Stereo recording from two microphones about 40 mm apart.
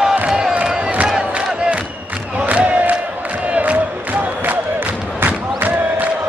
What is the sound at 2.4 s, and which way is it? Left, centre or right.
Crowd, right.